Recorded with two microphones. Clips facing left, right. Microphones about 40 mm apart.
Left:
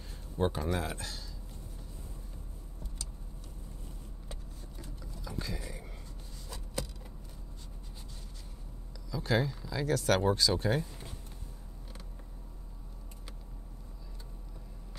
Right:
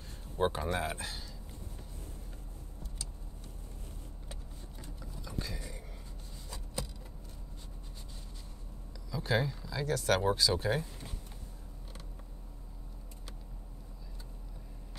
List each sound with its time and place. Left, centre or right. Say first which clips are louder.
0.4 s speech: even; centre
4.3 s vehicle: left 2 dB; centre
6.5 s a sound: left 2 dB; centre
9.1 s speech: left 1 dB; centre